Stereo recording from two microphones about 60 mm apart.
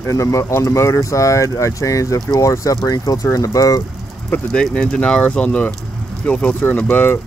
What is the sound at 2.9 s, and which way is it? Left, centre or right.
Speech, left.